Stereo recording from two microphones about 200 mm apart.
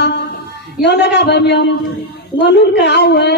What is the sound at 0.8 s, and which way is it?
A woman's voice, 60° left (ahead or behind).